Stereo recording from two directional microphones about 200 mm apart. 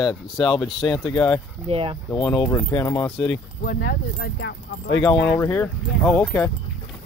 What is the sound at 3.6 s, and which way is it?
Speech, 45° left (ahead or behind).